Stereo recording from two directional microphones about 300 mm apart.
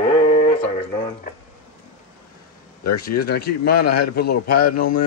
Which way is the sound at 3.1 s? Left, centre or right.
Left.